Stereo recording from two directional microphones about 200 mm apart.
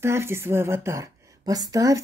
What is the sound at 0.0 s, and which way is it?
A woman's voice, 10° right (ahead or behind).